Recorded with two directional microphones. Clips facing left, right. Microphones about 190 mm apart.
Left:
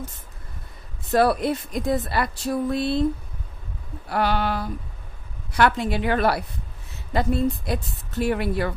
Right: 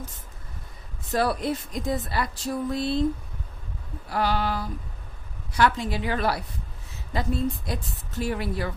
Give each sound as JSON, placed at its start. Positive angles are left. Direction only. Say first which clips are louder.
{"t": 1.1, "sound": "speech", "louder": "left 5 dB", "side_deg": 65}
{"t": 4.1, "sound": "speech", "louder": "left 2 dB", "side_deg": 60}